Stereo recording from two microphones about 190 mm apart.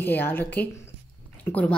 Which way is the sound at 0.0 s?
10° left (ahead or behind).